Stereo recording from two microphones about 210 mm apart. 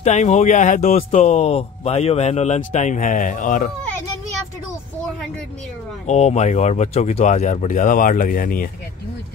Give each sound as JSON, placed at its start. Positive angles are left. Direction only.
{"t": 0.0, "sound": "speech", "side_deg": 35}
{"t": 6.0, "sound": "speech", "side_deg": 30}